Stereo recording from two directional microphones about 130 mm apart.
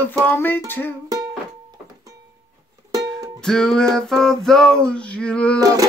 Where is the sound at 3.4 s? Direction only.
5° left (ahead or behind).